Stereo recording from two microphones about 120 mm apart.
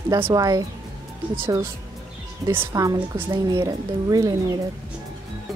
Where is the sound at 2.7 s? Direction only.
30° right (ahead or behind).